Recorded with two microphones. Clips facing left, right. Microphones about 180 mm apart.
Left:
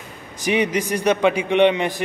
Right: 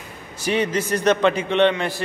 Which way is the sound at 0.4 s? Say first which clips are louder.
Left 1 dB; 15° left (ahead or behind).